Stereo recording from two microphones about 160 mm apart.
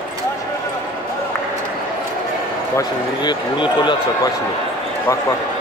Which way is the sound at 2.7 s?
25° left (ahead or behind).